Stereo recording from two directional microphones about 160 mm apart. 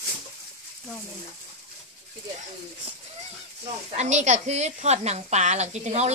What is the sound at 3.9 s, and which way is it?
A woman's voice, 45° right (ahead or behind).